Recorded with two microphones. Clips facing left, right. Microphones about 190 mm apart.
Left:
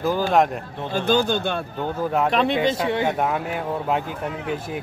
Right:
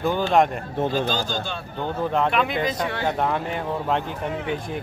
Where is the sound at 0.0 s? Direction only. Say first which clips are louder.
Even; 5° left (ahead or behind).